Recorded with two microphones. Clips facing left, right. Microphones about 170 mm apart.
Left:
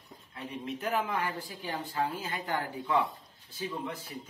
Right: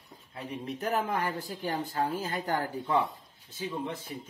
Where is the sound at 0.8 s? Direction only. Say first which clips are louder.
Right 2 dB; 40° right (ahead or behind).